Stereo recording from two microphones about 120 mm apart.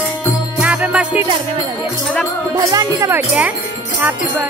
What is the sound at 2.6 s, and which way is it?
Music, 25° right (ahead or behind).